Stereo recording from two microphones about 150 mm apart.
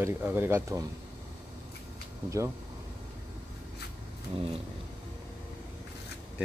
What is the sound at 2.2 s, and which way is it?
Speech, 20° right (ahead or behind).